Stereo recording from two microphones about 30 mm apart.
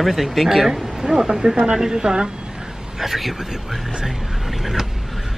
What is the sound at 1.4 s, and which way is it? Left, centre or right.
Speech, right.